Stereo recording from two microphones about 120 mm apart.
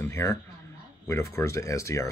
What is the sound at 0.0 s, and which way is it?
Speech, 20° left (ahead or behind).